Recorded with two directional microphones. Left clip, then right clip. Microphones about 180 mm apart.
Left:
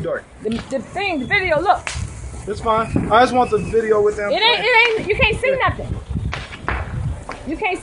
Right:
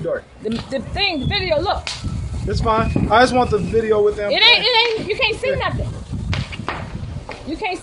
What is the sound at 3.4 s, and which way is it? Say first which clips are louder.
Speech: left 1 dB; centre (ahead or behind).